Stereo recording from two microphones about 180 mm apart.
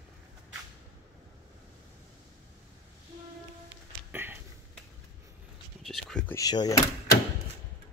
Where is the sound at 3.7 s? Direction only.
10° right (ahead or behind).